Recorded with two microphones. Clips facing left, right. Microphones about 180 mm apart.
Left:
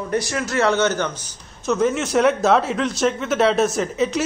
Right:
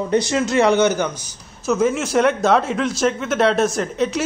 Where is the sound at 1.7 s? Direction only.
Centre (ahead or behind).